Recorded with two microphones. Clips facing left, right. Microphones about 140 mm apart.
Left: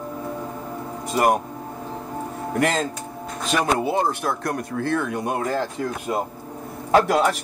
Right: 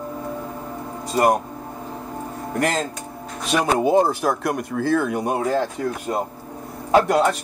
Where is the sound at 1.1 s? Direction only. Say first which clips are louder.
Right 1 dB; 5° left (ahead or behind).